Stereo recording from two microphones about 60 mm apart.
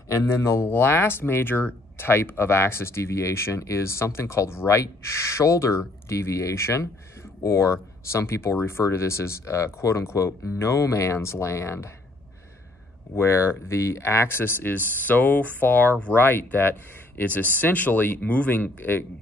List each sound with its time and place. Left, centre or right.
0.1 s speech: left
0.7 s speech: left
13.1 s speech: left